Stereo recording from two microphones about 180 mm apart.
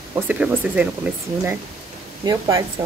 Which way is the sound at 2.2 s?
20° right (ahead or behind).